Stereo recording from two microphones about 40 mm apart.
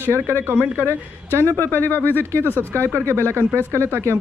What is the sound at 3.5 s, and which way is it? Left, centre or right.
Speech, right.